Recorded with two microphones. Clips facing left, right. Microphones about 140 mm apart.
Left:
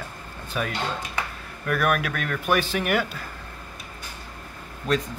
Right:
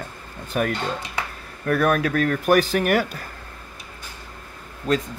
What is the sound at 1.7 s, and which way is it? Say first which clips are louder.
Speech: right 4 dB; 30° right (ahead or behind).